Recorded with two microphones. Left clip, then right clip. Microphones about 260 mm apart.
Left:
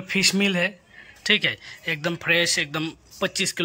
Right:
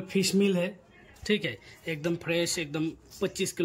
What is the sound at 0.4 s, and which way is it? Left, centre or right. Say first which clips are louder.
Speech: left 5 dB; left.